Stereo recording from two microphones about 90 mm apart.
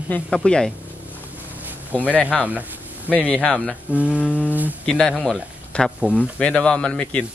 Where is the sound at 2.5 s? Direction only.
15° right (ahead or behind).